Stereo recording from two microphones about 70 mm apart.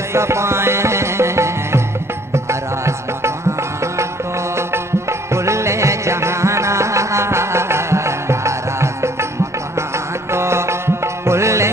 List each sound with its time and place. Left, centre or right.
0.1 s music: right
5.3 s music: right
10.3 s music: right